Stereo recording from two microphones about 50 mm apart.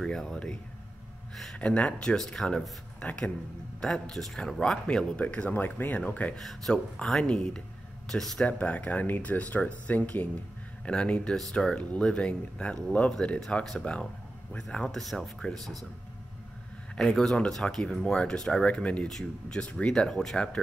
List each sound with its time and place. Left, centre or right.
0.0 s speech: centre
1.6 s speech: left
3.0 s speech: left
3.8 s speech: centre
5.6 s speech: left
6.3 s speech: centre
7.1 s speech: centre
8.1 s speech: centre
8.5 s speech: left
14.9 s speech: centre
17.0 s speech: centre; by 19.0 s left
19.0 s speech: centre
19.6 s speech: centre